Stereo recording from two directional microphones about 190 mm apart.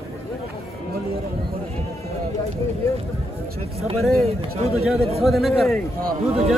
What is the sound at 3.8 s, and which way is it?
Speech, 30° right (ahead or behind).